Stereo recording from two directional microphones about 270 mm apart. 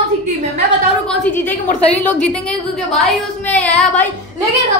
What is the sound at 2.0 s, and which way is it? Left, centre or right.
A man's voice, centre.